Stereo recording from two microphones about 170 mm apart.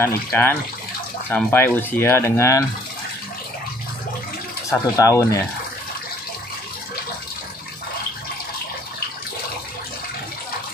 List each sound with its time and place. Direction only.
0.0 s speech: 15° left (ahead or behind)
4.6 s speech: 20° left (ahead or behind)